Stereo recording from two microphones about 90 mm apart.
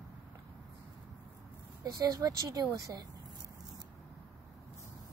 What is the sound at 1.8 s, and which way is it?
Speech, 40° right (ahead or behind).